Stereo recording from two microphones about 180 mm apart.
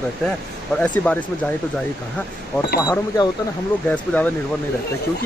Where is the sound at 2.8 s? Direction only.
20° left (ahead or behind).